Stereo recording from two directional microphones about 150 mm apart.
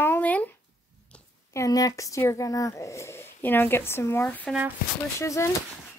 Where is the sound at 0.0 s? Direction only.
10° left (ahead or behind).